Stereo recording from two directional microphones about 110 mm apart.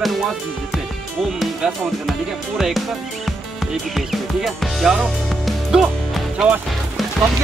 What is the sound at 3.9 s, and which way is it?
Speech, centre (ahead or behind).